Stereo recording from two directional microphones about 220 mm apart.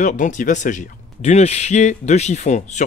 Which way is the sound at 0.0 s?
35° left (ahead or behind).